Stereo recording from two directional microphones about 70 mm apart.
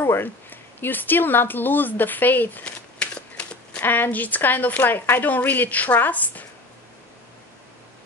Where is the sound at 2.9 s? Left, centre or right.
Centre.